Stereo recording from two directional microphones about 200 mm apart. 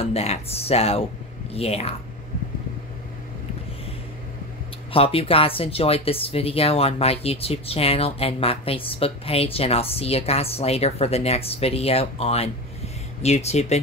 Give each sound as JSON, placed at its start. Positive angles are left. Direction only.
{"t": 0.0, "sound": "speech", "side_deg": 30}
{"t": 4.9, "sound": "speech", "side_deg": 30}